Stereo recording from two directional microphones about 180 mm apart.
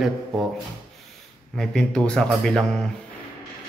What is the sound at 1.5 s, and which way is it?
Speech, 5° left (ahead or behind).